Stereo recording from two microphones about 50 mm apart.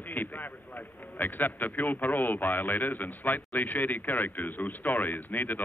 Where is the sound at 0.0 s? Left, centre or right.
Left.